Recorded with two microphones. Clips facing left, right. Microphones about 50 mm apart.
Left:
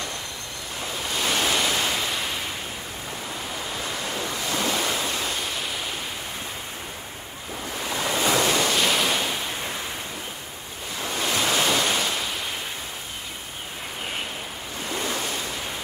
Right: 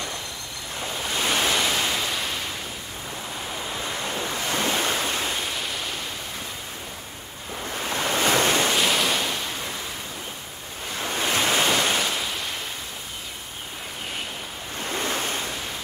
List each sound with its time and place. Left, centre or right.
1.1 s waves: centre
4.1 s waves: right
5.2 s pink noise: centre
5.5 s waves: centre
7.8 s waves: right
8.7 s waves: centre
11.0 s waves: right
11.4 s waves: centre
15.0 s waves: right